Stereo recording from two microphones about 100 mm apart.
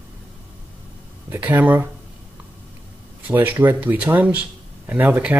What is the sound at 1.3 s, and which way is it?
Speech, 20° right (ahead or behind).